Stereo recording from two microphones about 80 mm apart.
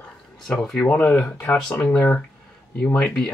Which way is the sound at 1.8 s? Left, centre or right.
Centre.